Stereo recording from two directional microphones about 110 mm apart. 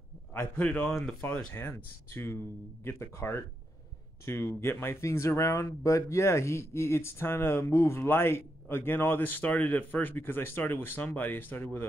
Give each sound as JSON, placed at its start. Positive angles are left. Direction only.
{"t": 0.3, "sound": "a man's voice", "side_deg": 15}